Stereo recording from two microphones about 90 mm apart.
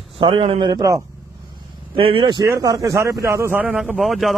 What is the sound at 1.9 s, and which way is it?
Speech, 85° right.